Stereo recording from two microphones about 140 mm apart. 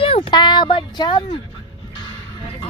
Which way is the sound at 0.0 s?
40° left (ahead or behind).